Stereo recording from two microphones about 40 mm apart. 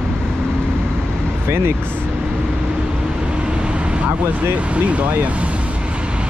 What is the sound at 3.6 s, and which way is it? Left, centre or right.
Vehicle, right.